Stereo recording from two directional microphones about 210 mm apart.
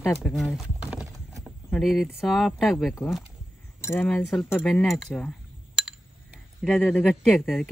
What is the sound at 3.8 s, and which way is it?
Speech, 10° left (ahead or behind).